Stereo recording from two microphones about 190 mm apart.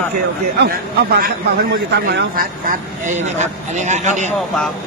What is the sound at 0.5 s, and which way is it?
Speech, 55° right (ahead or behind).